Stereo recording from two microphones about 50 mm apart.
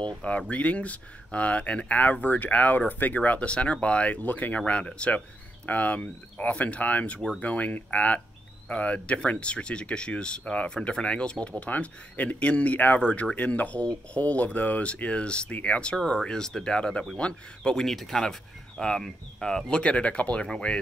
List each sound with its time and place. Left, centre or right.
0.0 s speech: left
19.8 s speech: left